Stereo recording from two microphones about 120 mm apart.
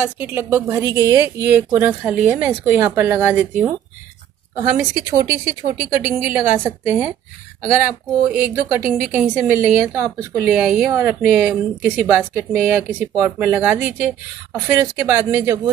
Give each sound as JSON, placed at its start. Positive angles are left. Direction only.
{"t": 0.0, "sound": "a woman's voice", "side_deg": -15}
{"t": 4.6, "sound": "a woman's voice", "side_deg": -20}
{"t": 6.0, "sound": "a woman's voice", "side_deg": -15}
{"t": 8.3, "sound": "a woman's voice", "side_deg": -15}
{"t": 10.4, "sound": "a woman's voice", "side_deg": -10}